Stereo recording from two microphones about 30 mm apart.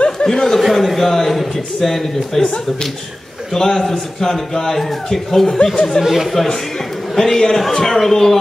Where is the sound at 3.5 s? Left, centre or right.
Centre.